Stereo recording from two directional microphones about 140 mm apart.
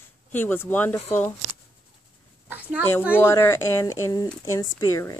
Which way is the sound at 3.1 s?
20° left (ahead or behind).